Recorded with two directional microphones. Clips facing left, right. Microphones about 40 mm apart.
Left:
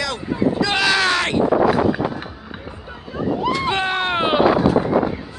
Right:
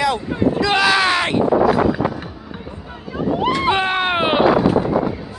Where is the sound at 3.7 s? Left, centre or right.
Centre.